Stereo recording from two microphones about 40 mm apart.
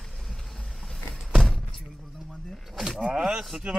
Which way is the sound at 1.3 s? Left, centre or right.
Centre.